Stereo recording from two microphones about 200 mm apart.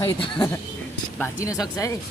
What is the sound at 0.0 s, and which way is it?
Speech, 15° left (ahead or behind).